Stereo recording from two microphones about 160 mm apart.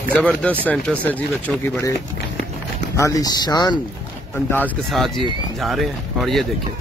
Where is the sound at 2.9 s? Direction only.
20° left (ahead or behind).